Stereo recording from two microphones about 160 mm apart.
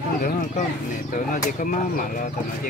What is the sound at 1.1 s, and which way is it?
Speech, 55° left (ahead or behind).